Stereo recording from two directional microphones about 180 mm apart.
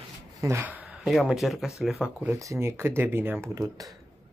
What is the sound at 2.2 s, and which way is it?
Speech, 15° right (ahead or behind).